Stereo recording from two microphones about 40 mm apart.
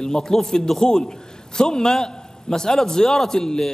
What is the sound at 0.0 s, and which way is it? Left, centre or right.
A man's voice, centre.